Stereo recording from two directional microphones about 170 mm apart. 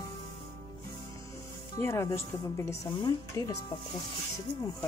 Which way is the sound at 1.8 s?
15° left (ahead or behind).